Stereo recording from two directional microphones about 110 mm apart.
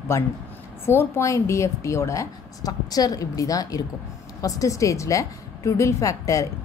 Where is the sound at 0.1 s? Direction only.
25° left (ahead or behind).